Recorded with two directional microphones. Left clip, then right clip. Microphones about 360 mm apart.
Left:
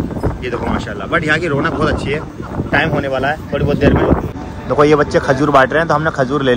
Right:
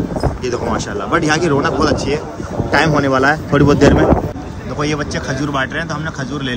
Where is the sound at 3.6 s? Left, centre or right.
Centre.